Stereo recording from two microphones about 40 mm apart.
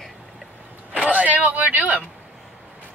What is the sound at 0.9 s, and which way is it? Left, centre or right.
Speech, right.